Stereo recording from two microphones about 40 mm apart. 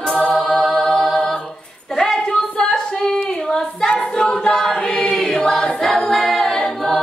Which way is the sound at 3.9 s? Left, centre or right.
Left.